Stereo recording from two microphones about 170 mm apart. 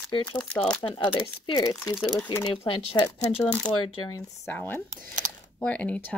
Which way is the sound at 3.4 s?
5° left (ahead or behind).